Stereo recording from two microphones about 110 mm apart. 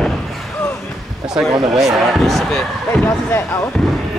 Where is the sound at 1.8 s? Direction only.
Centre (ahead or behind).